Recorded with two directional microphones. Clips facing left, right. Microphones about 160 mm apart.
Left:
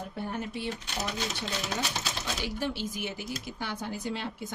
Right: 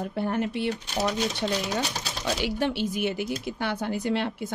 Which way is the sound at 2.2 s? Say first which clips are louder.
Right 8 dB; 70° right (ahead or behind).